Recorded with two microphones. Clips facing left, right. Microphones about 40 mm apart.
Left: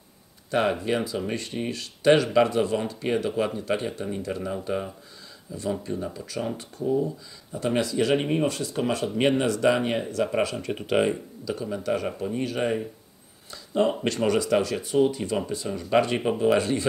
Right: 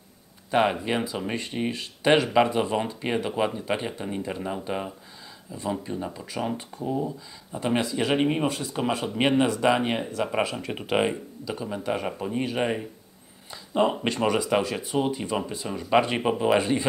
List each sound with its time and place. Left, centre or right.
0.5 s speech: centre